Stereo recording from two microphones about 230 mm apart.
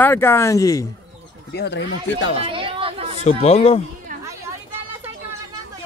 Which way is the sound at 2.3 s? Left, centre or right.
Right.